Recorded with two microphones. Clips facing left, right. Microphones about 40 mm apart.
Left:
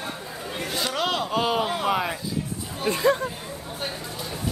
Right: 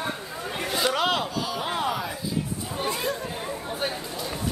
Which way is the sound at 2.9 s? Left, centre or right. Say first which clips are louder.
Left 11 dB; left.